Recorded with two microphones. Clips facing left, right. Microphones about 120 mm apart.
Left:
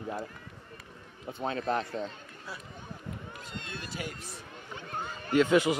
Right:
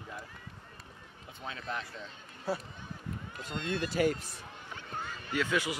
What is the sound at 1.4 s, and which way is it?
Speech, 45° left (ahead or behind).